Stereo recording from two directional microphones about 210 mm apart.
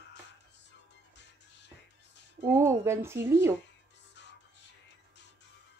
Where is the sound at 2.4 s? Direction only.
10° right (ahead or behind).